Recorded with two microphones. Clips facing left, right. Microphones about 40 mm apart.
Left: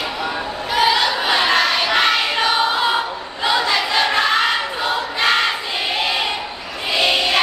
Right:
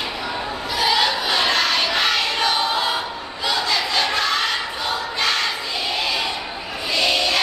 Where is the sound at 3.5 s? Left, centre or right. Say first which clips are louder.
Left 4 dB; left.